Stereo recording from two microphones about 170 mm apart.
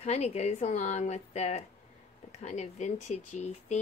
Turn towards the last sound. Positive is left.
turn(degrees=40)  # may be behind; listen again after turning